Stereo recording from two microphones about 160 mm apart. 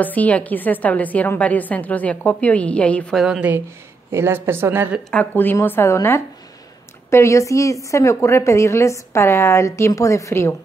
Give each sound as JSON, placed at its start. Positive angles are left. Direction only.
{"t": 0.0, "sound": "a woman's voice", "side_deg": 10}
{"t": 5.1, "sound": "a woman's voice", "side_deg": 10}